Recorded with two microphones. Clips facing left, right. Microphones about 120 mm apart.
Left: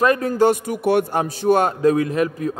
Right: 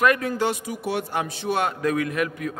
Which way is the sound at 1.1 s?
40° left (ahead or behind).